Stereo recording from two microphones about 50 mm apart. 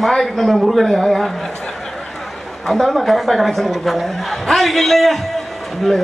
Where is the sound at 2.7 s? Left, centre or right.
Centre.